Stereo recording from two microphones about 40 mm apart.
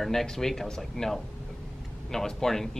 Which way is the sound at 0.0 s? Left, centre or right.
Centre.